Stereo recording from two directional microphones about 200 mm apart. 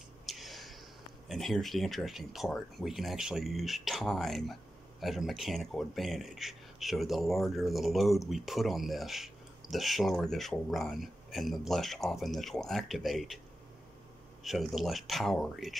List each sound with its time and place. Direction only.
0.3 s a sound: centre (ahead or behind)
1.3 s speech: centre (ahead or behind)
14.4 s speech: centre (ahead or behind)